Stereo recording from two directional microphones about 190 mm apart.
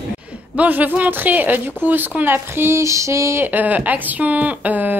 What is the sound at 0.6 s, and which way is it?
A woman's voice, 10° right (ahead or behind).